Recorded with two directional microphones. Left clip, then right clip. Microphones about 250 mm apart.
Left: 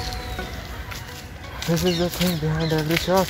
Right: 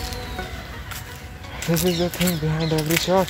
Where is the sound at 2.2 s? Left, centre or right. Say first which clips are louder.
Right 1 dB; centre.